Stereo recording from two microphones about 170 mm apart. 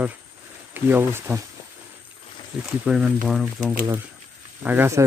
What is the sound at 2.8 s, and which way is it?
Speech, centre (ahead or behind).